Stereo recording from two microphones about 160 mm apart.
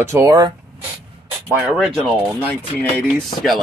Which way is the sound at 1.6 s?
Centre (ahead or behind).